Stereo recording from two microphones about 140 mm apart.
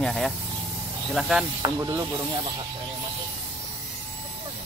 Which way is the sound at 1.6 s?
30° right (ahead or behind).